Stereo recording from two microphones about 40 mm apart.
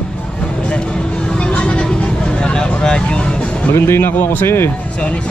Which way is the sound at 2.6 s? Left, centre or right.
Centre.